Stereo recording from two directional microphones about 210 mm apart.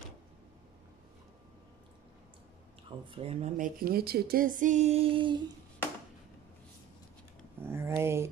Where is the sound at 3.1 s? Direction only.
30° right (ahead or behind).